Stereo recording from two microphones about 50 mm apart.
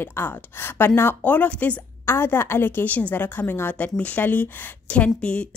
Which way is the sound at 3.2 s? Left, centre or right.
Left.